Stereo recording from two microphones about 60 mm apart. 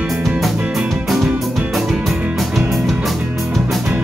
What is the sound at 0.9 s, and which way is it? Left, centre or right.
Music, centre.